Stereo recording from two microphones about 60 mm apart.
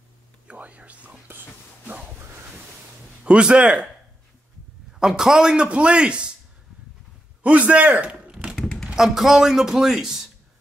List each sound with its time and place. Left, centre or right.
0.5 s whispering: right
3.3 s speech: centre
4.9 s speech: centre
7.4 s a man's voice: right; by 10.2 s centre